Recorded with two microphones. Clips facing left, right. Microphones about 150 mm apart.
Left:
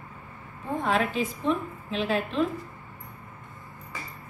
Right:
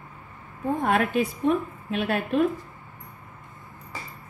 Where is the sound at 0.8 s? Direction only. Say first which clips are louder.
Right 2 dB; 55° right (ahead or behind).